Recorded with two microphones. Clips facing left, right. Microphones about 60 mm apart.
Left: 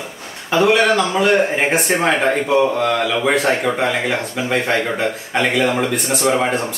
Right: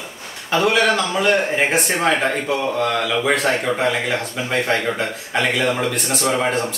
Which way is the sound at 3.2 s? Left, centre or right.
Centre.